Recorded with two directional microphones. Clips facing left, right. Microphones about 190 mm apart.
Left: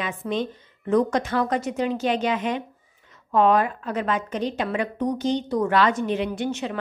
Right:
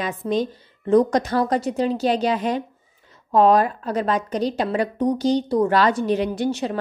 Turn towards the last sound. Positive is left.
turn(degrees=-35)  # may be behind; listen again after turning